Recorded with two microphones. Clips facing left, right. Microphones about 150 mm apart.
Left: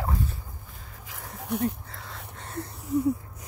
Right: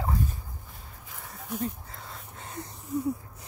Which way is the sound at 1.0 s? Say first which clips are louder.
Left 6 dB; 70° left (ahead or behind).